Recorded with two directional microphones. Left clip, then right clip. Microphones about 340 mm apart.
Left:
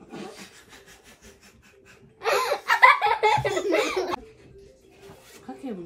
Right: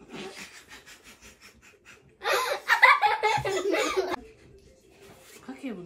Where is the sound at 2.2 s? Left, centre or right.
Left.